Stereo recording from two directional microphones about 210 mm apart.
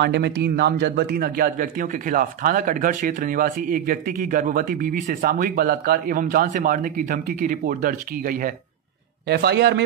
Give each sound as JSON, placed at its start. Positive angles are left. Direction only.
{"t": 0.0, "sound": "speech", "side_deg": -50}
{"t": 9.3, "sound": "a man's voice", "side_deg": -50}